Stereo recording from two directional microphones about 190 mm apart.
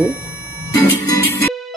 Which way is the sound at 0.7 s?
15° left (ahead or behind).